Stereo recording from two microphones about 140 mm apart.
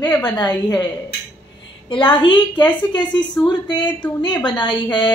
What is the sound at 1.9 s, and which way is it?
Speech, 35° left (ahead or behind).